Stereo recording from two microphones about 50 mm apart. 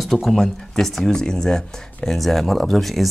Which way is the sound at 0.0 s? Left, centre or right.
Centre.